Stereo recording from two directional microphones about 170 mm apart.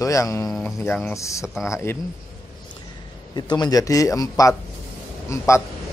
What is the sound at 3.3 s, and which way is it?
Speech, 25° left (ahead or behind).